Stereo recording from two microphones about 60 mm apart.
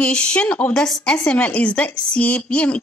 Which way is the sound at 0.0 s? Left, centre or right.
Centre.